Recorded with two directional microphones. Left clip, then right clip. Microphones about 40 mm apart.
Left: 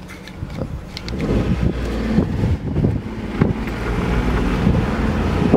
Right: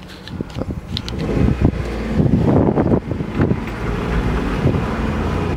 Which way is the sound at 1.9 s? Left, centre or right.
Centre.